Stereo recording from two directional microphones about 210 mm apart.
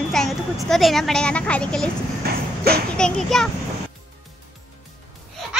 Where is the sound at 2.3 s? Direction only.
45° right (ahead or behind).